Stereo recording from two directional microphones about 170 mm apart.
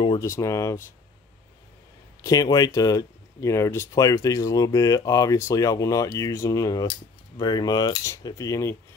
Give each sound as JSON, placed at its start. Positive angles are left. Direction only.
{"t": 0.2, "sound": "speech", "side_deg": 15}
{"t": 2.2, "sound": "speech", "side_deg": 20}